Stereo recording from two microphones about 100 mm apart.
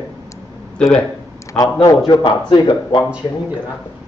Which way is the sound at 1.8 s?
45° left (ahead or behind).